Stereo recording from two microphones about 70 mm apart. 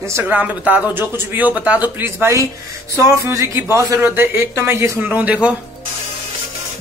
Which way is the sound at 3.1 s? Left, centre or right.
Right.